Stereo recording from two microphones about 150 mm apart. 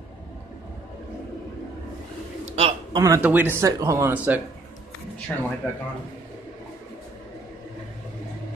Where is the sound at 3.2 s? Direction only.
10° right (ahead or behind).